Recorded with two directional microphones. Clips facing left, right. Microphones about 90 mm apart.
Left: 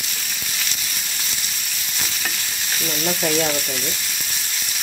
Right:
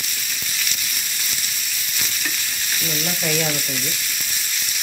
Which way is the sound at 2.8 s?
25° left (ahead or behind).